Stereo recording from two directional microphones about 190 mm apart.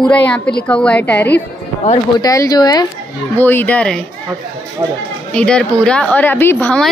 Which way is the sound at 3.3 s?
10° left (ahead or behind).